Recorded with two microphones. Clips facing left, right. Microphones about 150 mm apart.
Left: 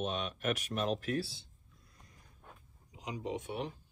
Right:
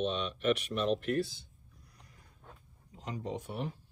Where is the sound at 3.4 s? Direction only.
Centre (ahead or behind).